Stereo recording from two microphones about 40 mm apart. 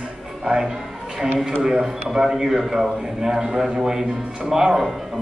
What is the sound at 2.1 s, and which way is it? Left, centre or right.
A man's voice, centre.